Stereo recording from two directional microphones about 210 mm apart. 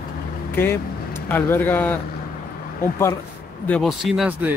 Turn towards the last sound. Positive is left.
turn(degrees=-5)  # may be behind; listen again after turning